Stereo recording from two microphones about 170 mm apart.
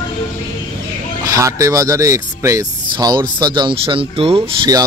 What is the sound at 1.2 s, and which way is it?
Speech, 20° right (ahead or behind).